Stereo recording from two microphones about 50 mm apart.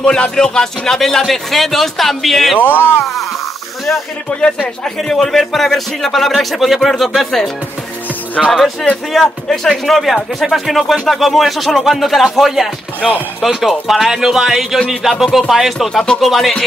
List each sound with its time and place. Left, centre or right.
0.0 s speech: centre
2.6 s speech: left
4.3 s speech: left
5.0 s speech: centre
8.5 s speech: centre
15.9 s speech: centre